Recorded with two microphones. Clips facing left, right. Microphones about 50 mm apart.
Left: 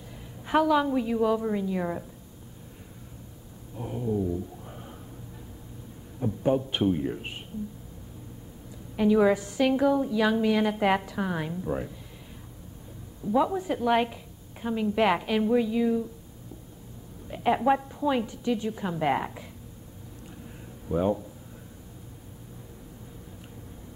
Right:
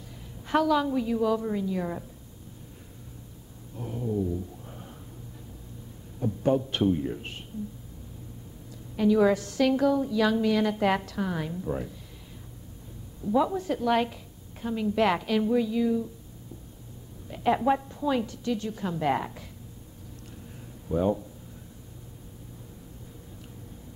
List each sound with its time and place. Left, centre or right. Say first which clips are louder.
0.5 s a woman's voice: left 1 dB; centre
3.7 s a sound: left 1 dB; centre
6.1 s a woman's voice: even; centre
8.9 s a woman's voice: even; centre
13.2 s a woman's voice: even; centre
17.3 s a woman's voice: left 1 dB; centre
20.9 s a woman's voice: even; centre